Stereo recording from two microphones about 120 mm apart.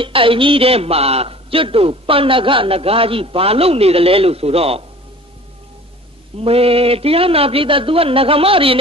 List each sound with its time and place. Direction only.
0.0 s a man's voice: 45° right (ahead or behind)
6.3 s a man's voice: 55° right (ahead or behind)